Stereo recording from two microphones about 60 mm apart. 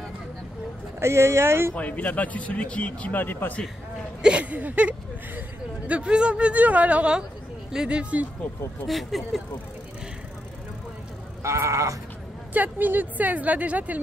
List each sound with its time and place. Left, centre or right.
0.9 s speech: right
1.8 s speech: left
4.2 s speech: centre
8.8 s speech: centre
11.4 s sheep: right
12.5 s speech: right